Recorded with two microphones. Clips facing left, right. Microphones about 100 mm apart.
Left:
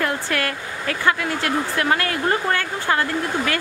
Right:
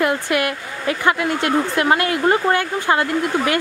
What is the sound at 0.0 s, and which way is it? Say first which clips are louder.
Speech: right 4 dB; 15° right (ahead or behind).